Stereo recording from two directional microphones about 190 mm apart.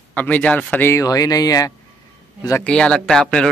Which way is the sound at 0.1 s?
10° left (ahead or behind).